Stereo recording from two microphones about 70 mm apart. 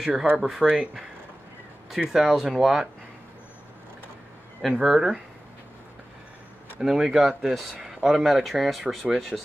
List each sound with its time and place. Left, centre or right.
0.0 s speech: centre
2.1 s speech: centre
4.6 s speech: centre
6.8 s speech: centre
8.8 s speech: centre